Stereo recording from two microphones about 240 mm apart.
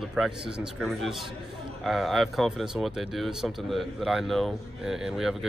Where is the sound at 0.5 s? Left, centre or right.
Centre.